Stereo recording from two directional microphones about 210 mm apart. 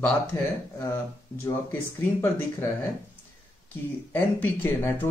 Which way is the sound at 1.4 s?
10° left (ahead or behind).